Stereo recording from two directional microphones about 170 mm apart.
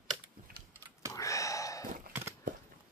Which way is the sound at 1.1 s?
20° left (ahead or behind).